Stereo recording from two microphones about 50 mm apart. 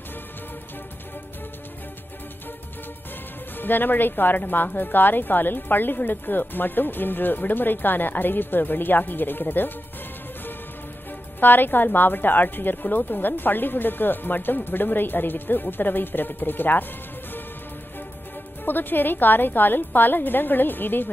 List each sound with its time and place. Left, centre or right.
3.5 s a woman's voice: left
11.3 s a woman's voice: left
18.7 s a woman's voice: left